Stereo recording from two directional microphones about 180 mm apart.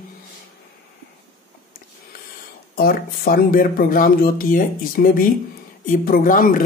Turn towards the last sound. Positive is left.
turn(degrees=50)  # may be behind; listen again after turning